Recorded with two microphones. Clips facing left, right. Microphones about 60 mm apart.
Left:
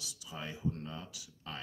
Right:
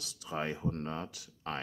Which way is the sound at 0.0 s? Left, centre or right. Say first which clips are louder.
Right 8 dB; right.